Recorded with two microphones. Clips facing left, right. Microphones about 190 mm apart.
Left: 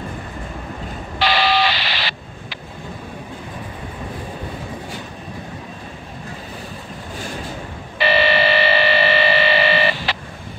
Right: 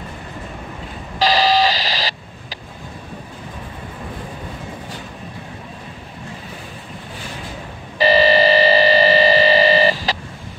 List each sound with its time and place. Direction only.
1.2 s telephone dialing: 40° right (ahead or behind)
8.0 s hum: 35° right (ahead or behind)